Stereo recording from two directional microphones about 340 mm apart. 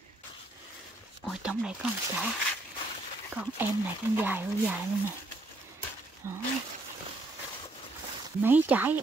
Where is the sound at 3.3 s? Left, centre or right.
Centre.